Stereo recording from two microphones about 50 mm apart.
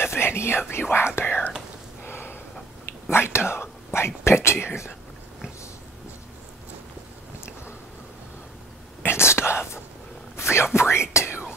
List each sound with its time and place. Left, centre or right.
0.0 s speech: left
2.0 s a sound: left
3.1 s speech: left
7.3 s a sound: left
9.0 s whispering: left
10.3 s cat: left
10.8 s whispering: left